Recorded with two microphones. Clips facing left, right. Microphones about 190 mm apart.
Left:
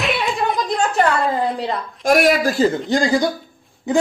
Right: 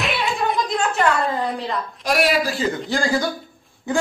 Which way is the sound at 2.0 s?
50° left (ahead or behind).